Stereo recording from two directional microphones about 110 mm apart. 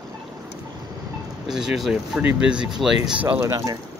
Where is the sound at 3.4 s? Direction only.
35° right (ahead or behind).